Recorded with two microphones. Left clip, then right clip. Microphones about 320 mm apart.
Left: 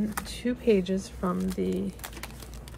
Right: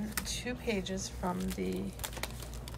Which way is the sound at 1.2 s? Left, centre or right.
Right.